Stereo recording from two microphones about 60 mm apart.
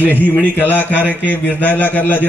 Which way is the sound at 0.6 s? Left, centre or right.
Left.